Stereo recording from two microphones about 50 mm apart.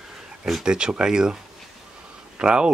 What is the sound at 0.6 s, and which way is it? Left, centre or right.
Speech, centre.